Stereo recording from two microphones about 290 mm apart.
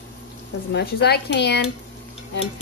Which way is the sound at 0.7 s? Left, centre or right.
Left.